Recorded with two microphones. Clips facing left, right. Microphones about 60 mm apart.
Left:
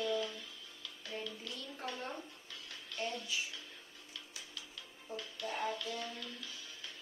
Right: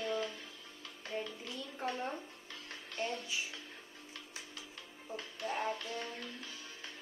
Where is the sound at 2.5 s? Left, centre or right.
Right.